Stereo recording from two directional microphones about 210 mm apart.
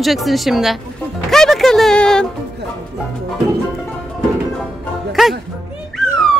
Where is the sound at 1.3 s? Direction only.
Centre (ahead or behind).